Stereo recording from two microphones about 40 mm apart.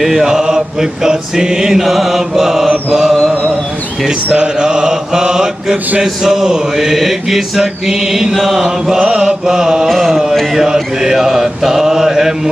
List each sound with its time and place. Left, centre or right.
0.0 s mantra: centre
4.3 s mantra: right
9.8 s a sound: centre
10.5 s mantra: centre